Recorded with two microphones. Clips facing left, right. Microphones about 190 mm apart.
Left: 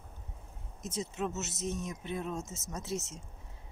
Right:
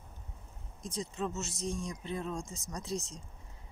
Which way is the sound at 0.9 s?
5° left (ahead or behind).